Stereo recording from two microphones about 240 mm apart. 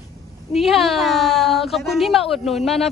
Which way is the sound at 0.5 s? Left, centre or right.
Centre.